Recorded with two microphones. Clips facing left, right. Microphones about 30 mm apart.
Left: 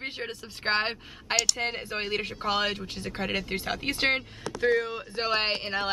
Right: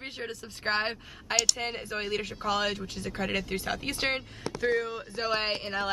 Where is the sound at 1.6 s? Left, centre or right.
Centre.